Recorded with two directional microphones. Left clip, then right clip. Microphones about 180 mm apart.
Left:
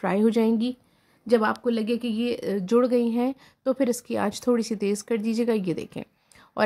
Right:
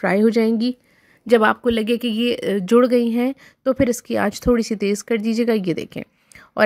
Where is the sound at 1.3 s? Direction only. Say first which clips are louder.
Right 7 dB; 40° right (ahead or behind).